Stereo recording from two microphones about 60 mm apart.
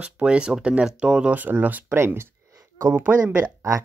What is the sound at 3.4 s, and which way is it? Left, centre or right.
Speech, right.